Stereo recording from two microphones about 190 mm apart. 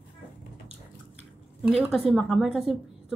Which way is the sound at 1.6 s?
5° right (ahead or behind).